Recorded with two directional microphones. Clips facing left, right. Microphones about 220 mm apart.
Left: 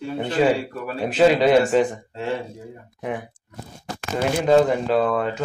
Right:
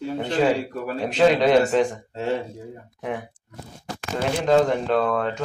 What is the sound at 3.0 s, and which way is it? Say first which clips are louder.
Speech: left 1 dB; 5° left (ahead or behind).